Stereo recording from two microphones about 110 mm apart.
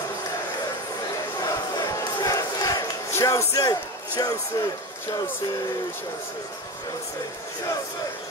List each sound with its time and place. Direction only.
1.4 s crowd: 35° left (ahead or behind)
4.2 s speech: 35° left (ahead or behind)